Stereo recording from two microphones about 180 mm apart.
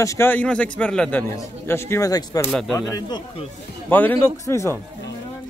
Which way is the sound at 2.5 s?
Centre (ahead or behind).